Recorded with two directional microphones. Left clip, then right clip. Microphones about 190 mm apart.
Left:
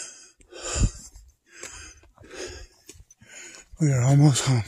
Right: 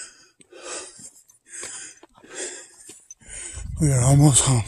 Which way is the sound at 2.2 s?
10° left (ahead or behind).